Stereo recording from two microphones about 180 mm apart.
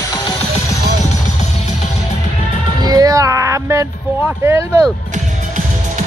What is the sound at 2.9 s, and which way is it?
Music, 20° right (ahead or behind).